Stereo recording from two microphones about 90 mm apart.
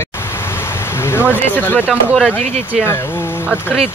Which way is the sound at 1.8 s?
5° right (ahead or behind).